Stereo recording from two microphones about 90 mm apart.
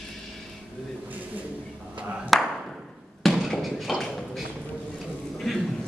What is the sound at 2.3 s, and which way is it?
Clapping, 5° left (ahead or behind).